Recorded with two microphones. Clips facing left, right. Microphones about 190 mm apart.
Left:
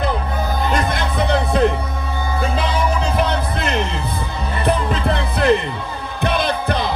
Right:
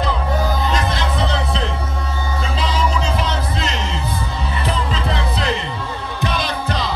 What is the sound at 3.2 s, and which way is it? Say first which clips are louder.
Music: left 3 dB; 60° left (ahead or behind).